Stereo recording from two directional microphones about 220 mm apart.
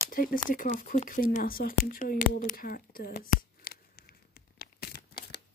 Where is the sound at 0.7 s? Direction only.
40° left (ahead or behind).